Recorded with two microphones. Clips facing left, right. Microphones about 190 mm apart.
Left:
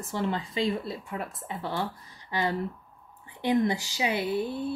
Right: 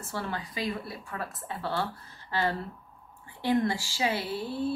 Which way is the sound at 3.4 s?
20° left (ahead or behind).